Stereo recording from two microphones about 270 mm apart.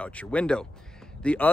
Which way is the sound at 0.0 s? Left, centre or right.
Centre.